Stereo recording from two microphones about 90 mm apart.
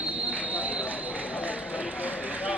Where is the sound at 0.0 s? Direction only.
15° right (ahead or behind).